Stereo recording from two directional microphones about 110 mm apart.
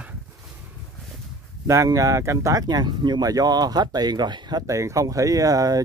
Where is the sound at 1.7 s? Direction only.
30° right (ahead or behind).